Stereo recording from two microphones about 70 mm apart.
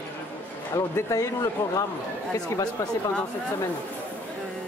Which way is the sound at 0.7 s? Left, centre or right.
Left.